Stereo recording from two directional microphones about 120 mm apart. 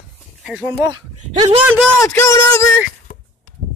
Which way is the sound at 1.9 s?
25° left (ahead or behind).